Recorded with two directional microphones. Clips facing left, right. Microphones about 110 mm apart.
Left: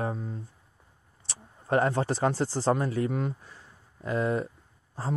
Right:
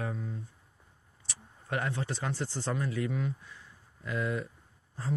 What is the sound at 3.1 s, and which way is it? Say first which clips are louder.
Speech: left 4 dB; 50° left (ahead or behind).